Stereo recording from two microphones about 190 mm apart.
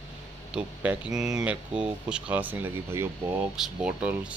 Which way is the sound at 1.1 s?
5° right (ahead or behind).